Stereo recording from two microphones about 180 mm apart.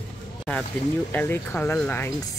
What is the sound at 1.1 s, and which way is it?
Speech, 10° left (ahead or behind).